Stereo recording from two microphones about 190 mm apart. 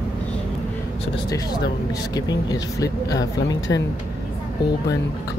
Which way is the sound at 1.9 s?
20° left (ahead or behind).